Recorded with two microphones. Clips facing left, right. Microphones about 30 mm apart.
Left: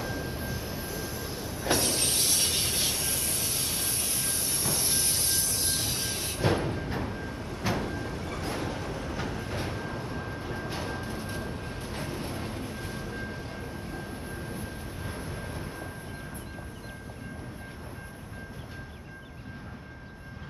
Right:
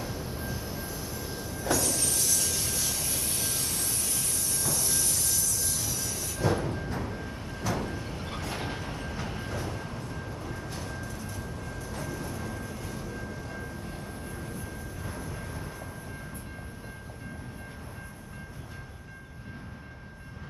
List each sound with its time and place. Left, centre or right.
0.0 s train: centre
1.7 s train: left
3.3 s vehicle: left
6.7 s music: left
7.1 s vehicle: centre
7.6 s train: left
8.5 s train: right
9.0 s train: centre
9.5 s train: left
9.8 s music: left
14.4 s vehicle: left